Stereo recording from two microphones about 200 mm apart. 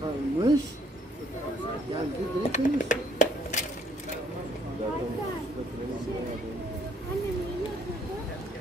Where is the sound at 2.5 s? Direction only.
40° left (ahead or behind).